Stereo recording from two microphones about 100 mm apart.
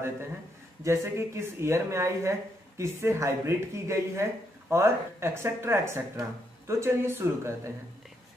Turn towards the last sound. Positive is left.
turn(degrees=-25)  # may be behind; listen again after turning